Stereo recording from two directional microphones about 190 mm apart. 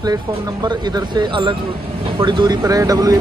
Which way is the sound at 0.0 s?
20° right (ahead or behind).